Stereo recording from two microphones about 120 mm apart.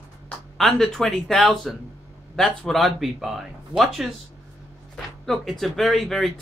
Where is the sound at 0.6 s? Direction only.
Centre (ahead or behind).